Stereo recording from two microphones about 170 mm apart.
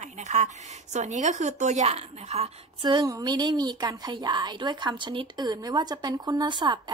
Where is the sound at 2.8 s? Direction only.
25° right (ahead or behind).